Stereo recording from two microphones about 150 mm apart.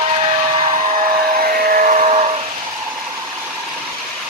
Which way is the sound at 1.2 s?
70° right (ahead or behind).